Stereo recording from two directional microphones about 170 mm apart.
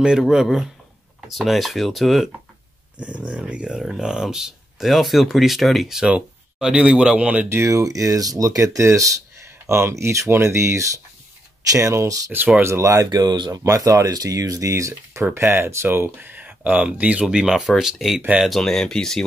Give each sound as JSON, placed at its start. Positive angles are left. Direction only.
{"t": 0.0, "sound": "speech", "side_deg": -5}